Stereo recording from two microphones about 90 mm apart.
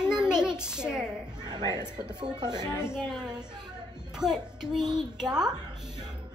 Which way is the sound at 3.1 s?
10° right (ahead or behind).